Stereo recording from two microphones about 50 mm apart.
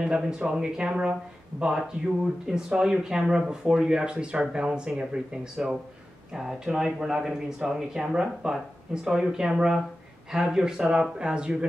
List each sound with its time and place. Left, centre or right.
0.0 s speech: centre